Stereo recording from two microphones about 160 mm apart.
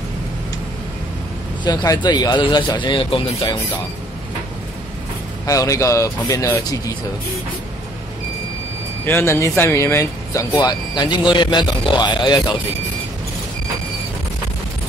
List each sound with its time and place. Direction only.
1.6 s speech: 25° left (ahead or behind)
5.5 s speech: 20° left (ahead or behind)
9.0 s speech: 15° left (ahead or behind)